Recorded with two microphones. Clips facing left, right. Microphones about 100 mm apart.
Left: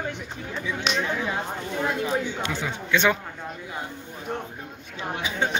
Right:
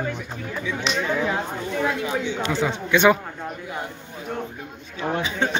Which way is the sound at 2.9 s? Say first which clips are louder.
Right 5 dB; 15° right (ahead or behind).